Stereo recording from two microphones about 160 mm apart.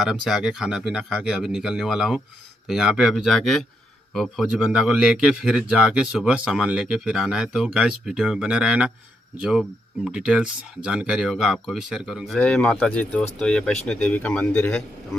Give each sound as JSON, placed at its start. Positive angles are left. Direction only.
{"t": 0.0, "sound": "a man's voice", "side_deg": -5}
{"t": 12.4, "sound": "speech", "side_deg": 5}